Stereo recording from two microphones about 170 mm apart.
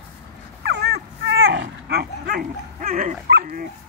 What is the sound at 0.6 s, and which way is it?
Dog, 80° right.